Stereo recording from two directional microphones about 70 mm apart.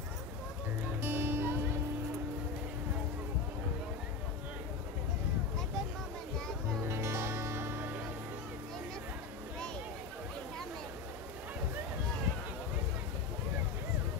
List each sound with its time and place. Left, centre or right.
1.0 s music: right
6.8 s music: right